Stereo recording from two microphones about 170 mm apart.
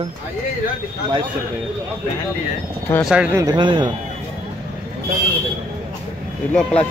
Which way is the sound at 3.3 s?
25° right (ahead or behind).